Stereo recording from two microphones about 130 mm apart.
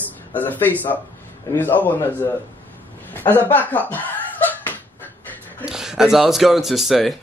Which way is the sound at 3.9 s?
15° left (ahead or behind).